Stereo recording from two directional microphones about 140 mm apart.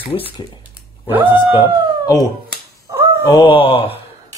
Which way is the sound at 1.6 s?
25° left (ahead or behind).